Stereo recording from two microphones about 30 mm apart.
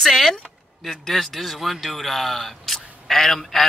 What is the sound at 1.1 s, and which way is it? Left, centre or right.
Speech, centre.